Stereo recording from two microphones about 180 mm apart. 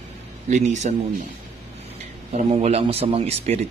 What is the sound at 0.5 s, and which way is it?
Speech, 40° right (ahead or behind).